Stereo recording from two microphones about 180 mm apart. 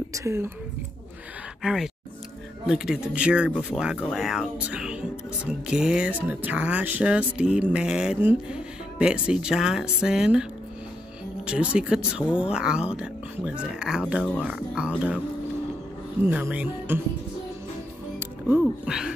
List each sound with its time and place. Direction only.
0.1 s speech: 15° right (ahead or behind)
1.6 s speech: 5° right (ahead or behind)
11.4 s speech: 5° right (ahead or behind)
14.2 s speech: 5° left (ahead or behind)
14.5 s speech: 5° right (ahead or behind)
16.3 s speech: 10° right (ahead or behind)
18.6 s speech: 5° right (ahead or behind)